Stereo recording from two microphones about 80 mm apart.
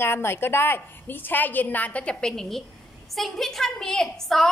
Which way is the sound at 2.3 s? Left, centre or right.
Centre.